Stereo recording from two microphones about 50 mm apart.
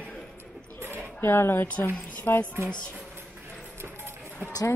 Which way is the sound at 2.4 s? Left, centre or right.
Right.